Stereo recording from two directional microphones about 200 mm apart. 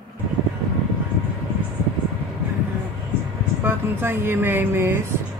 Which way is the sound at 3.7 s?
10° right (ahead or behind).